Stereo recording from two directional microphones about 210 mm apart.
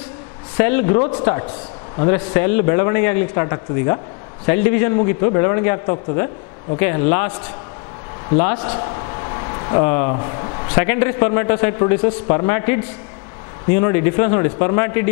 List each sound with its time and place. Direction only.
0.6 s a man's voice: 10° left (ahead or behind)
8.7 s a man's voice: 20° left (ahead or behind)